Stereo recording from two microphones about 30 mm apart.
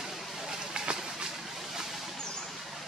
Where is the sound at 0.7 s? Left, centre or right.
Right.